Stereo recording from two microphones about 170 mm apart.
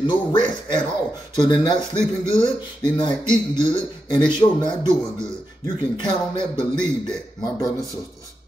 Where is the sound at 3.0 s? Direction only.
25° left (ahead or behind).